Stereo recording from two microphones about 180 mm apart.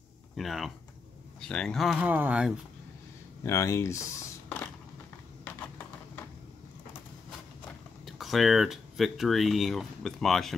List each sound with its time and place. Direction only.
0.4 s speech: centre (ahead or behind)
3.4 s speech: 15° left (ahead or behind)
8.0 s speech: centre (ahead or behind)